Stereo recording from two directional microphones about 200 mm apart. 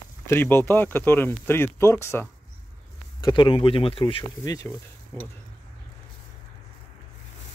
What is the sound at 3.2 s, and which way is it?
Speech, 25° left (ahead or behind).